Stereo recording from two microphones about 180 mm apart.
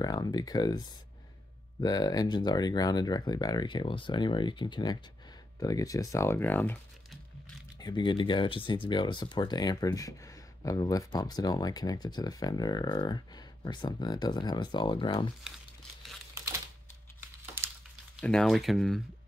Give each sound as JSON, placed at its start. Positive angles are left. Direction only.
{"t": 0.0, "sound": "speech", "side_deg": 20}
{"t": 7.8, "sound": "speech", "side_deg": 25}
{"t": 18.2, "sound": "speech", "side_deg": 5}